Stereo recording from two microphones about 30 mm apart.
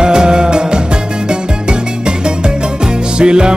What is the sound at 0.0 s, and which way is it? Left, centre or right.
Music, right.